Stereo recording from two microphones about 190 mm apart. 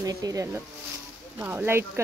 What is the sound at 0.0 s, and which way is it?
Speech, 20° right (ahead or behind).